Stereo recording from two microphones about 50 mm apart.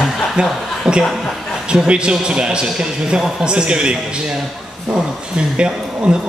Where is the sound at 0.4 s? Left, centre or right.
Centre.